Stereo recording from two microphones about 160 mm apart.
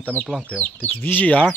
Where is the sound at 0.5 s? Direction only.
5° left (ahead or behind).